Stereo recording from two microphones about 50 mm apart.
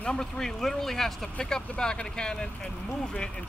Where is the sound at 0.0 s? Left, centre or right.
Left.